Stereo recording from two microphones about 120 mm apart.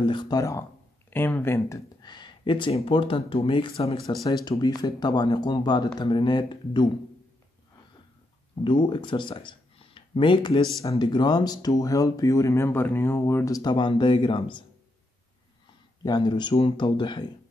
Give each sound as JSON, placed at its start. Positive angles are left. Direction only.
{"t": 0.0, "sound": "speech", "side_deg": 40}
{"t": 1.1, "sound": "speech", "side_deg": 15}
{"t": 2.0, "sound": "speech", "side_deg": 40}
{"t": 4.2, "sound": "speech", "side_deg": 35}
{"t": 8.6, "sound": "speech", "side_deg": 40}
{"t": 13.6, "sound": "speech", "side_deg": 40}
{"t": 16.0, "sound": "speech", "side_deg": 35}